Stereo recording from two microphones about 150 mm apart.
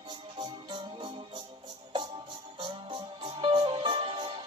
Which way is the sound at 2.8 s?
30° right (ahead or behind).